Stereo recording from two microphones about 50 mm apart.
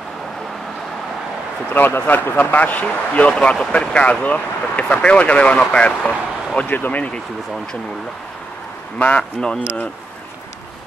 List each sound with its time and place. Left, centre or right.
1.7 s speech: left
8.9 s speech: left